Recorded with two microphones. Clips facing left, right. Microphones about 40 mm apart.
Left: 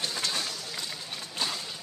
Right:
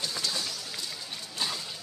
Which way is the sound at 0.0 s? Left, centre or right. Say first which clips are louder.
Left 1 dB; left.